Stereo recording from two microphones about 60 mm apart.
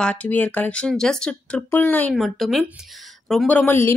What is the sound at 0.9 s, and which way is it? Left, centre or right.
Speech, centre.